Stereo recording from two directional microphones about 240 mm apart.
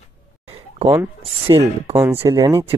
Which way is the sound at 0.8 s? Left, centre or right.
Centre.